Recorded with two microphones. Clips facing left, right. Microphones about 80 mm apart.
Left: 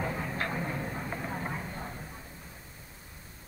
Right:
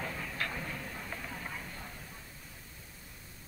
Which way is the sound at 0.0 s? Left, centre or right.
Left.